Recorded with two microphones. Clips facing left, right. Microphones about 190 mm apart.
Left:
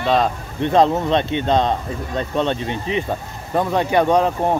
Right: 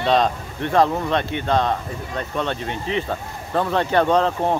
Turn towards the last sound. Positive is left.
turn(degrees=15)  # may be behind; listen again after turning